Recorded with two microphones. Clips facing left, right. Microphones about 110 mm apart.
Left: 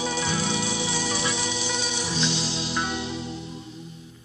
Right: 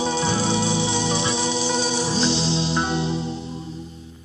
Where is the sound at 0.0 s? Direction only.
30° right (ahead or behind).